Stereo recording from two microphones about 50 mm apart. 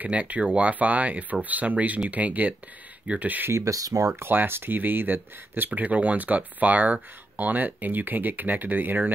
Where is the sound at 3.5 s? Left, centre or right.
Right.